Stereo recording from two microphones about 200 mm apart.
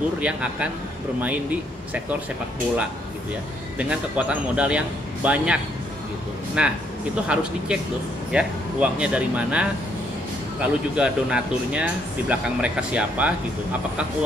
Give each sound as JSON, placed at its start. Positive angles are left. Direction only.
{"t": 0.2, "sound": "speech", "side_deg": -5}
{"t": 3.7, "sound": "speech", "side_deg": -5}